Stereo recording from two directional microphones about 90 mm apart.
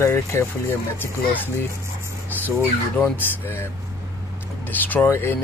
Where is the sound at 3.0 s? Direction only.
25° left (ahead or behind).